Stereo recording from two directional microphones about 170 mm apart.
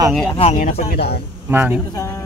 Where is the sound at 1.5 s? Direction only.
10° right (ahead or behind).